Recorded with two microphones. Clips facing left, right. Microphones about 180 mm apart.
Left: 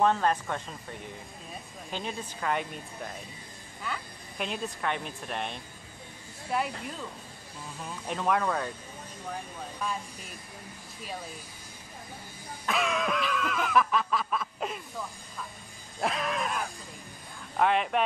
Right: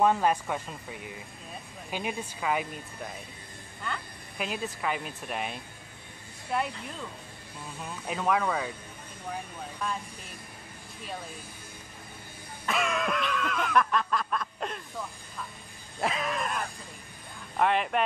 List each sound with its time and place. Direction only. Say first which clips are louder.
0.0 s speech: right 1 dB; 10° right (ahead or behind)
3.8 s speech: even; centre (ahead or behind)
8.1 s speech: even; centre (ahead or behind)
12.6 s a sound: even; centre (ahead or behind)
16.0 s dog: even; centre (ahead or behind)
17.6 s speech: even; centre (ahead or behind)